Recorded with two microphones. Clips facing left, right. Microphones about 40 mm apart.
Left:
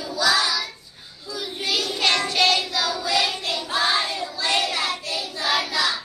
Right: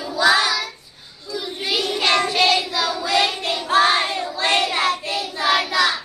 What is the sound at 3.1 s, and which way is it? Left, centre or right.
Child singing, right.